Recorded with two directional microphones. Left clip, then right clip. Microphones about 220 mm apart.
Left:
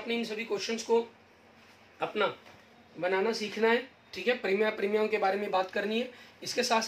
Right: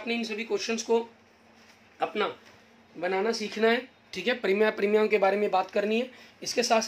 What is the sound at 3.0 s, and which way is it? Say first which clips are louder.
Speech: right 1 dB; 45° right (ahead or behind).